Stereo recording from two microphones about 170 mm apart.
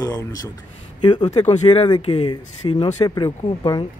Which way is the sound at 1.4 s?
35° left (ahead or behind).